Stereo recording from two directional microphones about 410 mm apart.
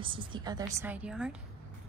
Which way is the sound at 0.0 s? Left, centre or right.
Centre.